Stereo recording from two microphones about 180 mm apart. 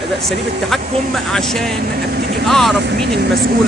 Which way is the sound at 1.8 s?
60° right (ahead or behind).